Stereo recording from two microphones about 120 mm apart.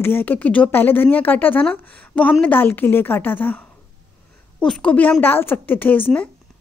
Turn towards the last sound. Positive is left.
turn(degrees=15)  # may be behind; listen again after turning